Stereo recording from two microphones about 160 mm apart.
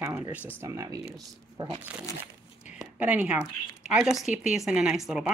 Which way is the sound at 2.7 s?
10° right (ahead or behind).